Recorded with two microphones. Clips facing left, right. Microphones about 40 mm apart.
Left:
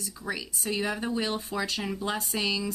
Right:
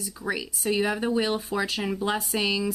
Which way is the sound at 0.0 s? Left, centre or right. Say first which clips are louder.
Right 4 dB; centre.